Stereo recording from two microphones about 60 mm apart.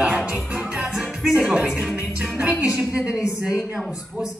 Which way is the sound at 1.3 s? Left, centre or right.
Centre.